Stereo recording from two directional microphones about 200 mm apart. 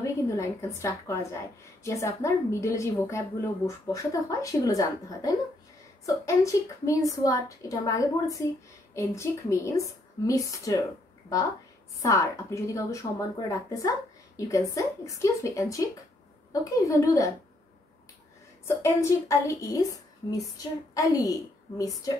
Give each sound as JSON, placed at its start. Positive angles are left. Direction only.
{"t": 0.0, "sound": "a woman's voice", "side_deg": 15}
{"t": 12.0, "sound": "a woman's voice", "side_deg": 15}
{"t": 18.7, "sound": "a woman's voice", "side_deg": 15}